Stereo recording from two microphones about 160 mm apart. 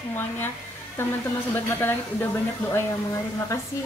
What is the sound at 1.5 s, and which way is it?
Speech, 15° left (ahead or behind).